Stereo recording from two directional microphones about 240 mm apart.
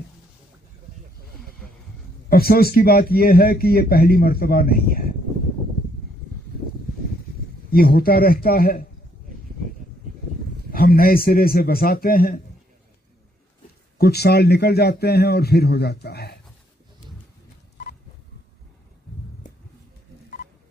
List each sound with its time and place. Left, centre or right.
2.2 s speech: left
7.7 s speech: left
10.7 s speech: left
13.9 s a man's voice: left